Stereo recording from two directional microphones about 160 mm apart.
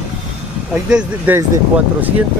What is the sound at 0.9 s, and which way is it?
Speech, 5° right (ahead or behind).